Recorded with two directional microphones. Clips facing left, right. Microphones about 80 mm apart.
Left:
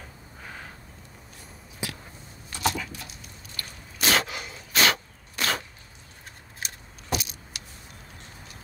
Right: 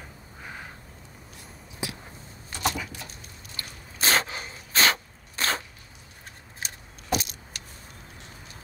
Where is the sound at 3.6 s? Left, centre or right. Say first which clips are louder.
Even; right.